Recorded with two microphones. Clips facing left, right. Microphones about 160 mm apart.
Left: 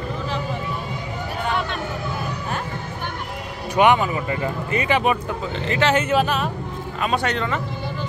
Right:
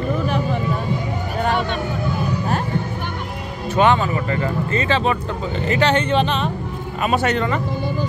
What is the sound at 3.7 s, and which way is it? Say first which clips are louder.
Speech: even; 15° left (ahead or behind).